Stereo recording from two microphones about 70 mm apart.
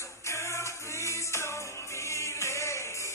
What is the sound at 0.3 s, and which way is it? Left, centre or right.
Music, left.